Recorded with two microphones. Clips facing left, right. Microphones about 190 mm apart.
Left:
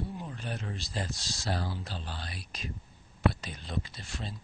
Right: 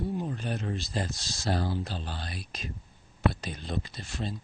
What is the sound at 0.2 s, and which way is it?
Speech, 50° right (ahead or behind).